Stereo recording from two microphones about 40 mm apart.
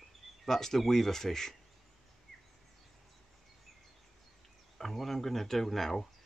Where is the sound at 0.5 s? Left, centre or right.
Centre.